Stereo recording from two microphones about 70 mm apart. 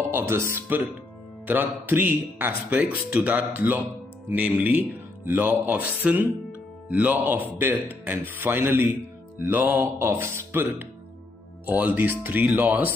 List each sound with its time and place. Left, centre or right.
0.1 s speech: right